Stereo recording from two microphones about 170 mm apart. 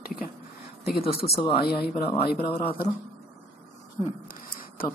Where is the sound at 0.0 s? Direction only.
60° left (ahead or behind).